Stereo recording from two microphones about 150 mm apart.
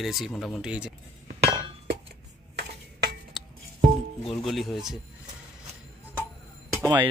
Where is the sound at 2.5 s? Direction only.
90° right.